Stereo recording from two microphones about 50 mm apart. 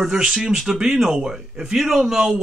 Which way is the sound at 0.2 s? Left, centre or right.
Centre.